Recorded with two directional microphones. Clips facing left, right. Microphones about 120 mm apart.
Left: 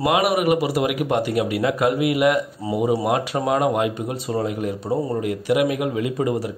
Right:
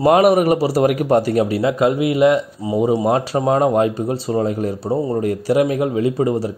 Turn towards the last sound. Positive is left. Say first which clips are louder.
# right 5 dB
turn(degrees=-30)  # may be behind; listen again after turning